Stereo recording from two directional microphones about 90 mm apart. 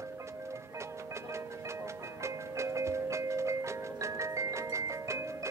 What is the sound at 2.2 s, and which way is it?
Music, 30° right (ahead or behind).